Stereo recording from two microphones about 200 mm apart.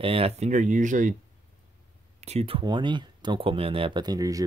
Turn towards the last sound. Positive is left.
turn(degrees=-15)  # may be behind; listen again after turning